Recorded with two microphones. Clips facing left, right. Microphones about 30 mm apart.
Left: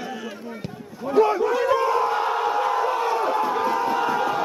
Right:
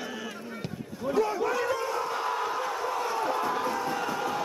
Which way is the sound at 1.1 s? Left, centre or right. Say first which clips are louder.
Left 8 dB; left.